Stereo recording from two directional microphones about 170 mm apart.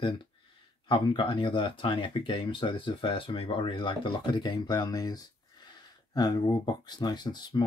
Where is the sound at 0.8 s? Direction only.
30° left (ahead or behind).